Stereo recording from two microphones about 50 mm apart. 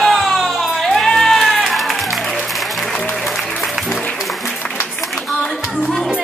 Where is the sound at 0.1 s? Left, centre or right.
Centre.